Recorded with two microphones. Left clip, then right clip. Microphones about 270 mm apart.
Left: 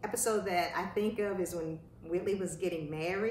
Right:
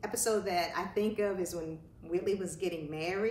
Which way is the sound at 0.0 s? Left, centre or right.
Centre.